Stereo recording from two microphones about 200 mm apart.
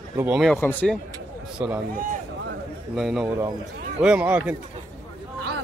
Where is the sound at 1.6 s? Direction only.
10° right (ahead or behind).